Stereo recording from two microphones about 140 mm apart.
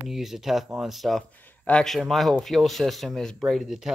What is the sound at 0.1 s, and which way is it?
Speech, centre (ahead or behind).